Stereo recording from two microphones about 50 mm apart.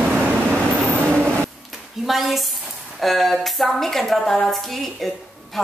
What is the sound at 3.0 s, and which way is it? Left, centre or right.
A woman's voice, centre.